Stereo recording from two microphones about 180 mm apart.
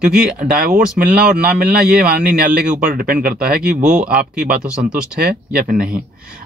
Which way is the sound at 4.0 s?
5° right (ahead or behind).